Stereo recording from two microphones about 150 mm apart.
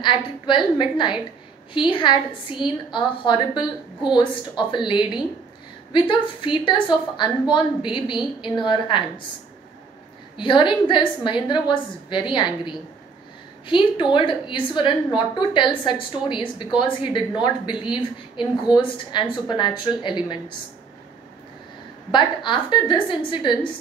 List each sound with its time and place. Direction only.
0.0 s a woman's voice: 30° left (ahead or behind)
10.3 s a woman's voice: 30° left (ahead or behind)
22.1 s a woman's voice: 30° left (ahead or behind)